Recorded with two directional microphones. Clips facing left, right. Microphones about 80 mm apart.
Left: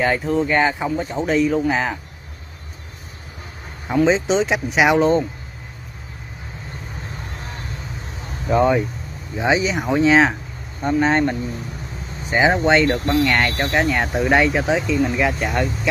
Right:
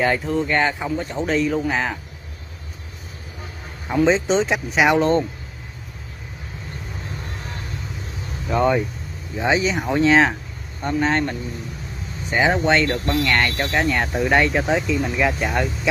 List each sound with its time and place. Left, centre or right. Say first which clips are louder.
0.0 s speech: left 1 dB; centre
3.9 s speech: left 1 dB; centre
8.5 s speech: left 2 dB; centre